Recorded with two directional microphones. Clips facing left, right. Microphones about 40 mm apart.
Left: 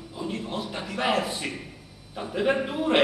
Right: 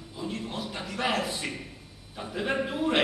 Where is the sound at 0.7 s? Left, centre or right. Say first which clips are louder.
Left 3 dB; centre.